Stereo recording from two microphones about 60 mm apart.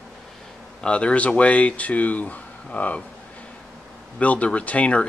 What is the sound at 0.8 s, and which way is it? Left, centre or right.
Speech, centre.